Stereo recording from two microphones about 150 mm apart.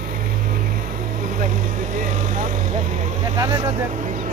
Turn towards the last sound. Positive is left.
turn(degrees=-55)  # may be behind; listen again after turning